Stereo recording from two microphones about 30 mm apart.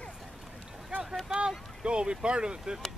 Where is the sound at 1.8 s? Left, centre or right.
Right.